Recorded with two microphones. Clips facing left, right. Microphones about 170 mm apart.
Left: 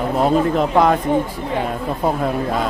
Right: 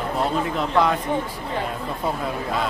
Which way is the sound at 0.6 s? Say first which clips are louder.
Left 2 dB; 50° left (ahead or behind).